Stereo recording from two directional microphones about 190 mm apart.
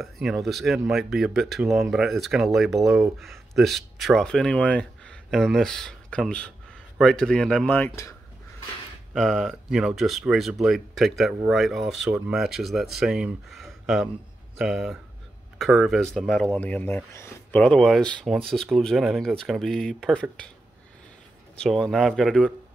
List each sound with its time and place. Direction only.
0.0 s speech: centre (ahead or behind)
9.1 s speech: centre (ahead or behind)
21.5 s speech: centre (ahead or behind)